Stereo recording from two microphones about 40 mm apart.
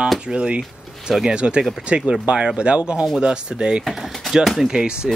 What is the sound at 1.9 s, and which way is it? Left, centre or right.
Speech, right.